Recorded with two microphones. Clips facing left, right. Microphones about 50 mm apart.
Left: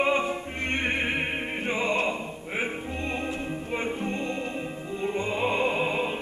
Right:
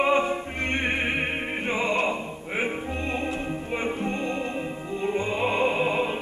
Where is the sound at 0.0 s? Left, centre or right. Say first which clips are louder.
Right 3 dB; centre.